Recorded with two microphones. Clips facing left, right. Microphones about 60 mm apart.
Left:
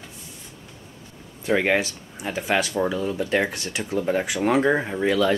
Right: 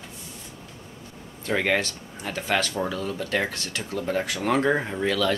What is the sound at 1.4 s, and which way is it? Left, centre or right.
Speech, centre.